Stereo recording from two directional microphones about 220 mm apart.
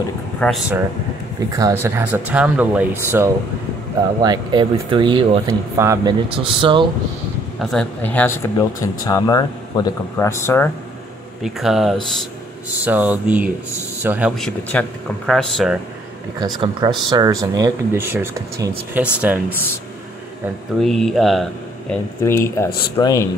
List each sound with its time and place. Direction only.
0.4 s speech: centre (ahead or behind)
1.6 s speech: 10° right (ahead or behind)
7.7 s speech: 5° left (ahead or behind)
11.4 s speech: centre (ahead or behind)
16.3 s speech: 20° right (ahead or behind)
20.4 s speech: centre (ahead or behind)
22.2 s speech: 10° left (ahead or behind)